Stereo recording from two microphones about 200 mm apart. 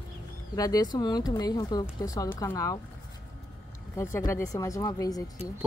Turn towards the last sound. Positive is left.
turn(degrees=20)  # may be behind; listen again after turning